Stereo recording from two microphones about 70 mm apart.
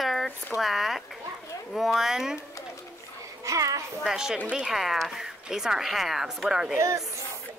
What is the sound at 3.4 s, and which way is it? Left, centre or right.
Speech, right.